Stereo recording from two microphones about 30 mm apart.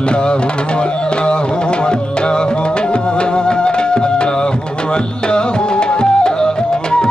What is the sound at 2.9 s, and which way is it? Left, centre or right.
Music, left.